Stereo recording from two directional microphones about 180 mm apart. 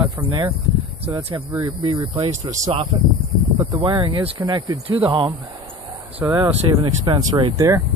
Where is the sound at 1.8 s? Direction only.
30° right (ahead or behind).